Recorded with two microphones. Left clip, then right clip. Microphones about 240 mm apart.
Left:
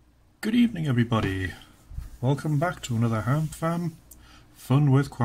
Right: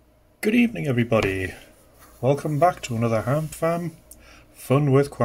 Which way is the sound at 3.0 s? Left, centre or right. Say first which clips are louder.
Right 6 dB; centre.